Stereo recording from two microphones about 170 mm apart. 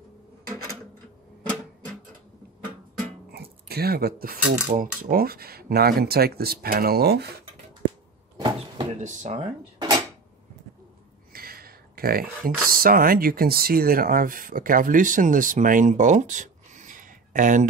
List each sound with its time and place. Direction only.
3.3 s speech: 70° right (ahead or behind)
8.4 s vehicle: 25° right (ahead or behind)
8.9 s speech: 45° right (ahead or behind)
9.8 s dishes: 25° right (ahead or behind)
11.3 s speech: 60° right (ahead or behind)